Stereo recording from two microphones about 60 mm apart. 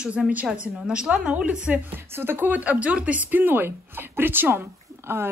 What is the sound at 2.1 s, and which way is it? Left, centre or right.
A woman's voice, right.